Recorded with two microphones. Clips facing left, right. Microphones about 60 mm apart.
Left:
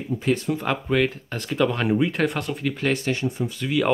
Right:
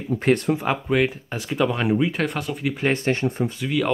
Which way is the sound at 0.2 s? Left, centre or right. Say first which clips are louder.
Right 4 dB; right.